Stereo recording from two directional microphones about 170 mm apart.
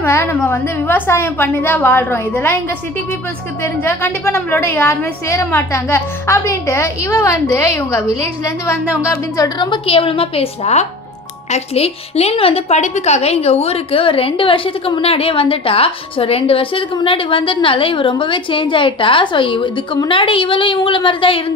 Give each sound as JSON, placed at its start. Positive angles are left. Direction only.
{"t": 0.0, "sound": "a woman's voice", "side_deg": 10}
{"t": 3.6, "sound": "a woman's voice", "side_deg": 15}